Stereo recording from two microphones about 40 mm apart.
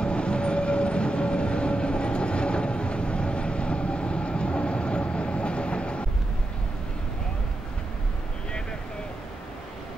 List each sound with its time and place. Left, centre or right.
0.0 s train: left